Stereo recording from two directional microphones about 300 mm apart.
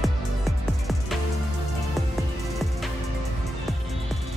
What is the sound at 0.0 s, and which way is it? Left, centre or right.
Music, centre.